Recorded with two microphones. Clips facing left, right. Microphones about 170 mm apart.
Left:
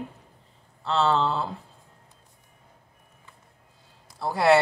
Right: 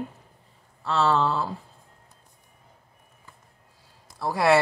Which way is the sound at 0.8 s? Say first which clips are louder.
Even; 25° left (ahead or behind).